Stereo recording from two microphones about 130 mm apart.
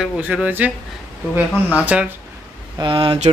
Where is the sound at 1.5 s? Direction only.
10° left (ahead or behind).